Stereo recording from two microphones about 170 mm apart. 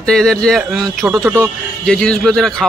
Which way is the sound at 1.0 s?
15° right (ahead or behind).